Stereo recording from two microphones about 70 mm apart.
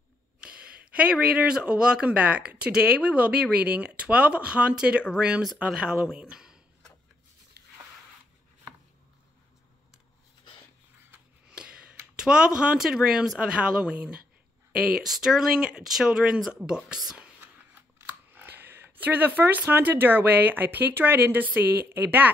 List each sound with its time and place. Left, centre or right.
0.4 s speech: centre
11.5 s a sound: centre
12.2 s speech: centre
17.9 s a woman's voice: right